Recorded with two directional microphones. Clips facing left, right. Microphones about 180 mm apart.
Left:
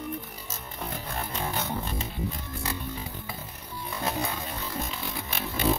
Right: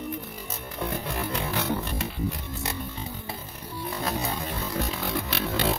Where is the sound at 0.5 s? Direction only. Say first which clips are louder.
Right 6 dB; 70° right (ahead or behind).